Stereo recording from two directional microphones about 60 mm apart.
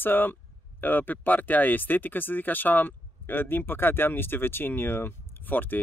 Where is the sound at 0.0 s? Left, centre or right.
Left.